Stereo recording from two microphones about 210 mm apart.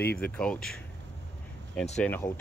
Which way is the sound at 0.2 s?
5° left (ahead or behind).